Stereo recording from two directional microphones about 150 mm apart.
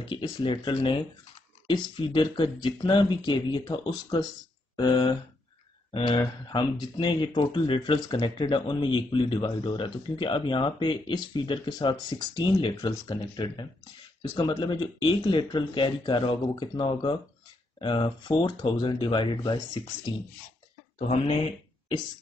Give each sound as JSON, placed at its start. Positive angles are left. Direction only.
{"t": 0.0, "sound": "speech", "side_deg": 30}
{"t": 5.9, "sound": "a sound", "side_deg": 35}
{"t": 6.1, "sound": "speech", "side_deg": 30}
{"t": 21.1, "sound": "speech", "side_deg": 40}